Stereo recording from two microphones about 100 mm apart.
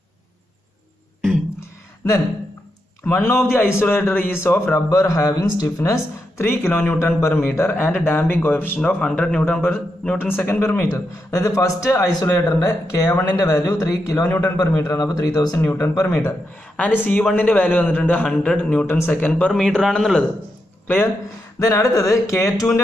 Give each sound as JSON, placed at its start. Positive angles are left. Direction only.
{"t": 1.6, "sound": "a sound", "side_deg": 30}
{"t": 3.1, "sound": "speech", "side_deg": 25}
{"t": 8.8, "sound": "a man's voice", "side_deg": 5}
{"t": 9.5, "sound": "a man's voice", "side_deg": 20}
{"t": 16.7, "sound": "a man's voice", "side_deg": 15}
{"t": 18.9, "sound": "speech", "side_deg": 20}
{"t": 19.5, "sound": "a man's voice", "side_deg": 5}
{"t": 20.8, "sound": "speech", "side_deg": 20}
{"t": 21.5, "sound": "a man's voice", "side_deg": 35}